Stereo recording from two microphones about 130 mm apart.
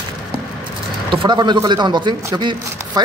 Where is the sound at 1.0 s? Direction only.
35° right (ahead or behind).